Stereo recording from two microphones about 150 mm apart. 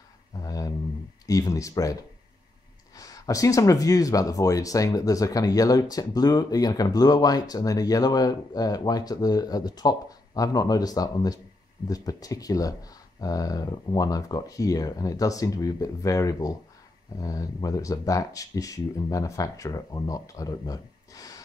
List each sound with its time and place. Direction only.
0.4 s a sound: 25° left (ahead or behind)
1.2 s speech: 25° left (ahead or behind)
3.0 s speech: 25° left (ahead or behind)